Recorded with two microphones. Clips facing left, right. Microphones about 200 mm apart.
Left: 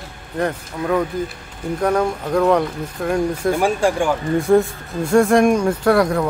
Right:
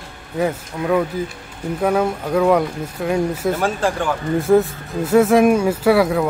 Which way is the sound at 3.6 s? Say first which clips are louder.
Left 3 dB; 10° left (ahead or behind).